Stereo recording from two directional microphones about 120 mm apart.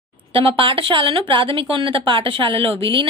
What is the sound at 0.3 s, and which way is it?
A woman's voice, 45° right (ahead or behind).